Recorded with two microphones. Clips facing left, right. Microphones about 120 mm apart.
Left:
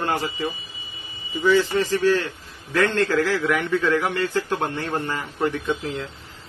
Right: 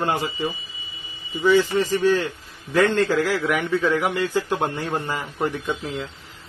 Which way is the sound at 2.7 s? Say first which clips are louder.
Right 2 dB; 10° right (ahead or behind).